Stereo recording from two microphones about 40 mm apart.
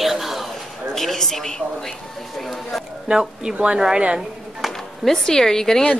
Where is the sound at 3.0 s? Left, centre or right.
Centre.